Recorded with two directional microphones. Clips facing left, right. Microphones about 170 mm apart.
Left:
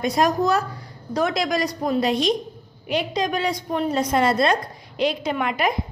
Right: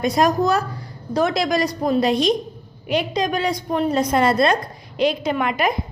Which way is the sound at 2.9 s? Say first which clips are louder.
Right 2 dB; 55° right (ahead or behind).